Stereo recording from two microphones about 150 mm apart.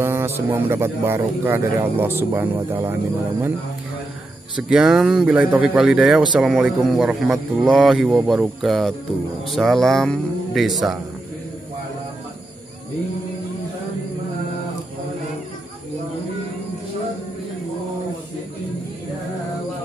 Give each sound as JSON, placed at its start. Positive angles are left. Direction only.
{"t": 0.0, "sound": "a man's voice", "side_deg": -15}
{"t": 4.6, "sound": "speech", "side_deg": -5}